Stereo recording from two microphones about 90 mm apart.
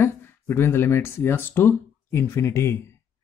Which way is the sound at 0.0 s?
25° left (ahead or behind).